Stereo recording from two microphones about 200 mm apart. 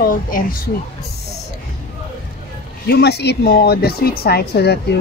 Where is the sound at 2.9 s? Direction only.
55° left (ahead or behind).